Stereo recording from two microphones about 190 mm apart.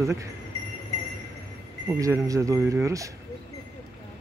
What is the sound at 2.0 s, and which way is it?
Speech, 15° right (ahead or behind).